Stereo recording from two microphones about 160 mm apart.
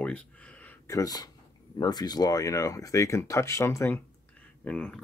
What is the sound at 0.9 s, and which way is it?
Speech, 25° left (ahead or behind).